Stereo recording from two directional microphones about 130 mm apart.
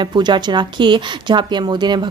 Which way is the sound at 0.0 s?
35° right (ahead or behind).